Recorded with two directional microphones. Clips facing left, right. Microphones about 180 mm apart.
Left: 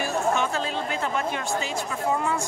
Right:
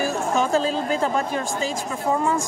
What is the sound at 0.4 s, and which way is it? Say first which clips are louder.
Speech: right 6 dB; 35° right (ahead or behind).